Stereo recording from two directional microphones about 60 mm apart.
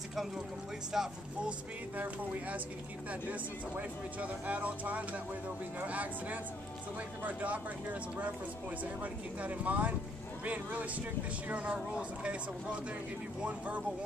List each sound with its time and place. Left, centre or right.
0.9 s speech: centre
3.1 s speech: right
7.2 s speech: right
9.0 s speech: right